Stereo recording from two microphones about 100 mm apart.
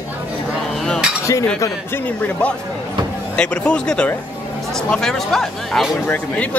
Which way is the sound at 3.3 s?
10° left (ahead or behind).